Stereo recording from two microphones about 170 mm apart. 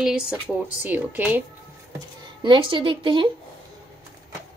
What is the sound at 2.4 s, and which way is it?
Speech, 30° right (ahead or behind).